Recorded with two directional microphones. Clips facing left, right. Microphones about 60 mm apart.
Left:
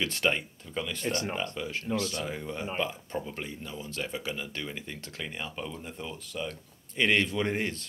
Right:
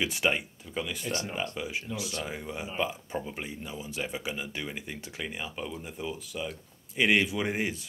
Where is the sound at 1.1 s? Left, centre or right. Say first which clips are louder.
Left 2 dB; left.